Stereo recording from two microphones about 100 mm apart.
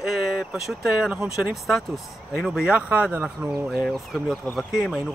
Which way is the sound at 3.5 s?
Centre (ahead or behind).